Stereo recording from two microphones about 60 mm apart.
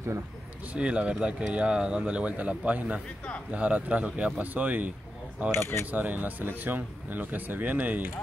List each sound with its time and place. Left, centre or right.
0.7 s speech: centre
5.5 s speech: left
5.9 s speech: right